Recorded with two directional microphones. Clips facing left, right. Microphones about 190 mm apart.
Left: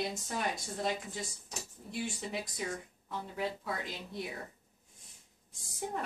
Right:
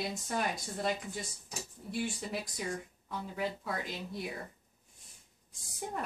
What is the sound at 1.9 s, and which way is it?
A woman's voice, centre (ahead or behind).